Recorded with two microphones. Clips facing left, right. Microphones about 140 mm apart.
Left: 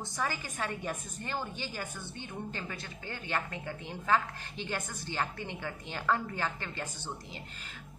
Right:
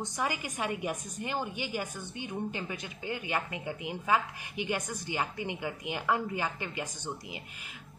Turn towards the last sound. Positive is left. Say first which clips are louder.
# right 3 dB
turn(degrees=-15)  # may be behind; listen again after turning